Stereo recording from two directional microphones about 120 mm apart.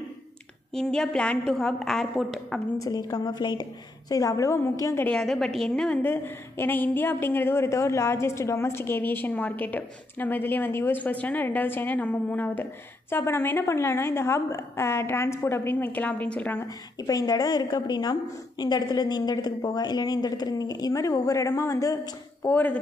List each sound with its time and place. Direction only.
0.7 s a woman's voice: 5° left (ahead or behind)
2.8 s a woman's voice: 30° left (ahead or behind)
5.0 s a woman's voice: 5° left (ahead or behind)
6.0 s a woman's voice: 20° left (ahead or behind)
17.0 s a woman's voice: 30° left (ahead or behind)